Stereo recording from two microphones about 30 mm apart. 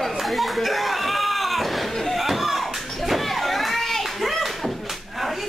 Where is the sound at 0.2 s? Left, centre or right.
Centre.